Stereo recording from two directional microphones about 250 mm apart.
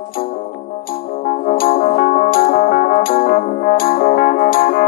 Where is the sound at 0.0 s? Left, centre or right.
Left.